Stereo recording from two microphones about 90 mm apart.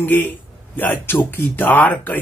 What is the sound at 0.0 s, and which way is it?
Speech, 20° left (ahead or behind).